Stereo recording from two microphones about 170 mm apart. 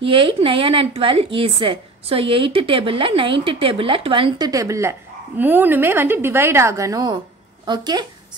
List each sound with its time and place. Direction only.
0.0 s a woman's voice: 30° right (ahead or behind)